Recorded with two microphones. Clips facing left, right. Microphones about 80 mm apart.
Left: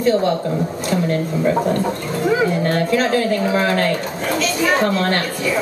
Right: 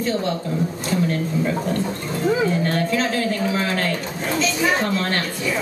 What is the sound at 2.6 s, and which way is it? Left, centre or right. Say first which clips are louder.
Speech: left 4 dB; left.